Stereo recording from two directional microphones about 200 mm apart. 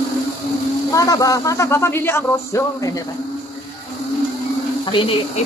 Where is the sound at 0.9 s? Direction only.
15° left (ahead or behind).